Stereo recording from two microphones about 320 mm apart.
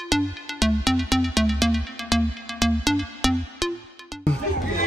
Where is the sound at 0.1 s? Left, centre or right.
Centre.